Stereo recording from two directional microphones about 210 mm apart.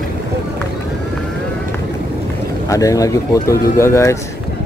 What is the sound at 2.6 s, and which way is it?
Speech, 15° left (ahead or behind).